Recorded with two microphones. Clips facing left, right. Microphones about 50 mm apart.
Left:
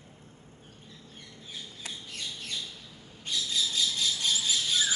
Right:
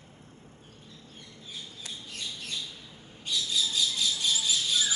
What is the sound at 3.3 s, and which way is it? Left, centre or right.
Bird, left.